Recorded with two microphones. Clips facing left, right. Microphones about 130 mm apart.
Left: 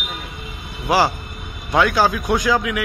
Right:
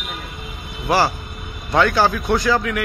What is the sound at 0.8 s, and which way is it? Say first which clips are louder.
A man's voice: left 1 dB; 10° left (ahead or behind).